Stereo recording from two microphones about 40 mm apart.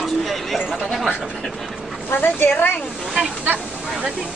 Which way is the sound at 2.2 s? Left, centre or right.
Left.